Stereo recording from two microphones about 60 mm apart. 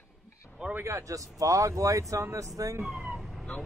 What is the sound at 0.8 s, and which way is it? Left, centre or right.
Speech, right.